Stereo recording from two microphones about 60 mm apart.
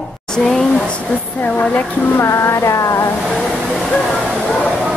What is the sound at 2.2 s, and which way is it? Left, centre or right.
Music, left.